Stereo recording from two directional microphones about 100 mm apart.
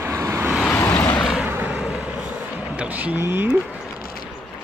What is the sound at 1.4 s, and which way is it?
Vehicle, 15° right (ahead or behind).